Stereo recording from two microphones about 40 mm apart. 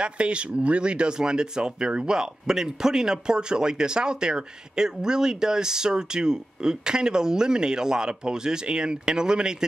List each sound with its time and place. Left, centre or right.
0.0 s speech: right